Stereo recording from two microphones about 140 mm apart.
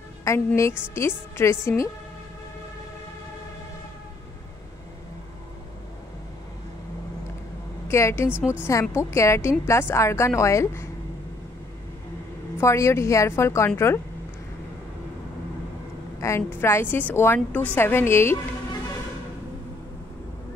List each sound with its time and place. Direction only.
0.3 s a woman's voice: 20° left (ahead or behind)
7.9 s a woman's voice: 20° left (ahead or behind)
8.3 s a woman's voice: 10° right (ahead or behind)
8.9 s a woman's voice: 20° left (ahead or behind)
12.5 s a woman's voice: 20° left (ahead or behind)
16.2 s a woman's voice: 20° left (ahead or behind)